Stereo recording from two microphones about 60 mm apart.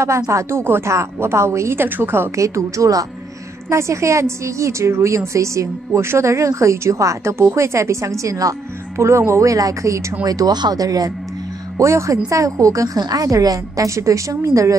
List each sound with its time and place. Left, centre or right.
0.3 s speech: right
1.8 s a woman's voice: right
2.3 s a woman's voice: right
3.7 s a woman's voice: right
7.3 s a woman's voice: right
10.2 s speech: right
11.8 s a woman's voice: right
12.3 s a woman's voice: right